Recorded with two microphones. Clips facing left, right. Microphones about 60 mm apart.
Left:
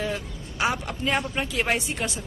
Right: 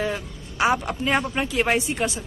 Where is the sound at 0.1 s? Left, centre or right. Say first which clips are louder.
Right 1 dB; centre.